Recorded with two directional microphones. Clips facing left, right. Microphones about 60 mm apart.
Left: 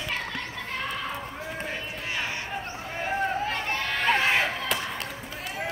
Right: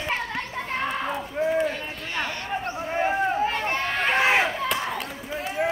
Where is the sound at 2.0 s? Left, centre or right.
Centre.